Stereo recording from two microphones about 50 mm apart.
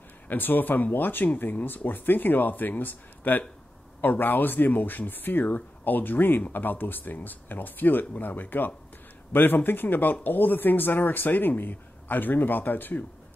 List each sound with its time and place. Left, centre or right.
0.3 s speech: left